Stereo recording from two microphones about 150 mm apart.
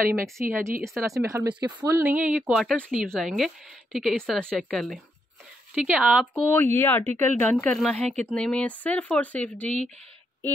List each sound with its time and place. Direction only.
0.2 s a woman's voice: 15° right (ahead or behind)
6.4 s speech: 15° left (ahead or behind)